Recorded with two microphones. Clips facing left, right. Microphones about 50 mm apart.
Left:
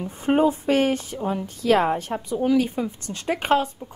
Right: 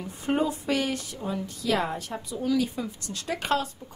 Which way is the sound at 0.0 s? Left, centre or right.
Left.